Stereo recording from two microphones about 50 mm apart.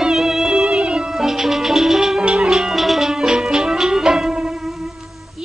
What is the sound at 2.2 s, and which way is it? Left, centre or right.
Music, right.